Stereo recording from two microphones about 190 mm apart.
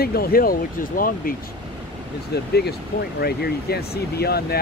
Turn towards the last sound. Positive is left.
turn(degrees=55)  # may be behind; listen again after turning